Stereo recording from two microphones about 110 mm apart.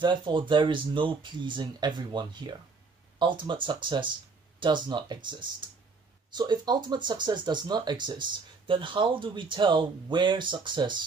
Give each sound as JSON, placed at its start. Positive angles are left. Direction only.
{"t": 0.0, "sound": "speech", "side_deg": -45}